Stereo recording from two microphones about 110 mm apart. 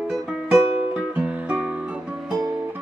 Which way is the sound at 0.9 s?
10° right (ahead or behind).